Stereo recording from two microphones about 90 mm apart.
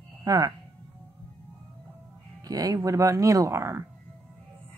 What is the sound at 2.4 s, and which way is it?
Speech, 45° right (ahead or behind).